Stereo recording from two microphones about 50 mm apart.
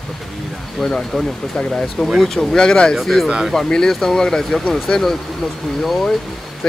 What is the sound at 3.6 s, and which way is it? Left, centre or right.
Speech, centre.